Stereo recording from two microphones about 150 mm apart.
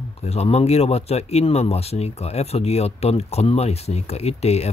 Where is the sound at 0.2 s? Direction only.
45° left (ahead or behind).